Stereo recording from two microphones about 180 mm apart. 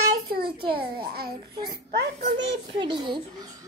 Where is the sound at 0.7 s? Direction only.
60° right (ahead or behind).